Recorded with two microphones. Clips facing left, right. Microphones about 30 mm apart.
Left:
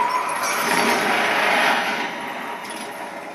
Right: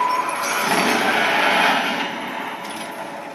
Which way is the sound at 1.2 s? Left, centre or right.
Right.